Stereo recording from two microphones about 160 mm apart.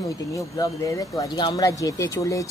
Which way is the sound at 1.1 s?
25° left (ahead or behind).